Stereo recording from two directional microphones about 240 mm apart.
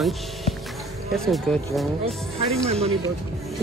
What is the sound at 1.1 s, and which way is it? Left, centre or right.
Speech, centre.